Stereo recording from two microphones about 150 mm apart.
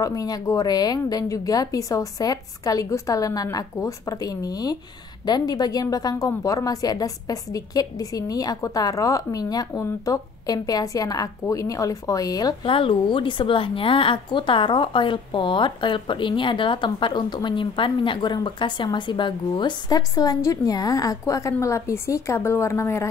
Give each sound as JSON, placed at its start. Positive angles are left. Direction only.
{"t": 0.0, "sound": "a woman's voice", "side_deg": 25}